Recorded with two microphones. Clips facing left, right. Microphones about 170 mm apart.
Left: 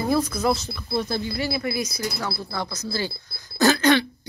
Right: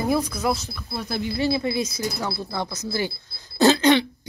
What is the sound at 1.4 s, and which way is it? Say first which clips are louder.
Speech: right 7 dB; 20° right (ahead or behind).